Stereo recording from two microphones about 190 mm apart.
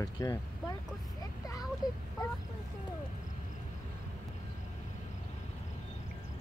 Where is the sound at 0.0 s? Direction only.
20° left (ahead or behind).